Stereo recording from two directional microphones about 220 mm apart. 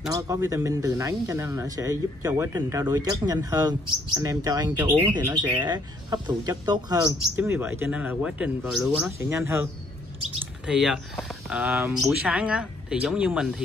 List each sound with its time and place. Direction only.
0.1 s speech: 15° right (ahead or behind)
10.7 s speech: centre (ahead or behind)